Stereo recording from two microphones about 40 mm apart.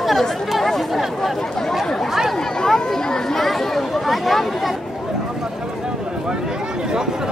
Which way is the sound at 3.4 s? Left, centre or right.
Centre.